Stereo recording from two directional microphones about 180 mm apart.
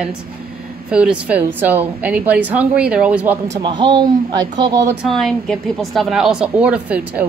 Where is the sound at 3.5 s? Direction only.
25° right (ahead or behind).